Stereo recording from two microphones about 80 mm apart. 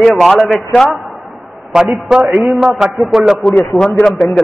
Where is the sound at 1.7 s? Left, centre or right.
Centre.